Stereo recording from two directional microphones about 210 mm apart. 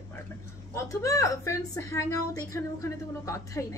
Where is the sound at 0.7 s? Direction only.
15° left (ahead or behind).